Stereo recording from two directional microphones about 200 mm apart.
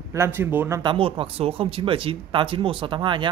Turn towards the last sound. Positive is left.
turn(degrees=-25)  # may be behind; listen again after turning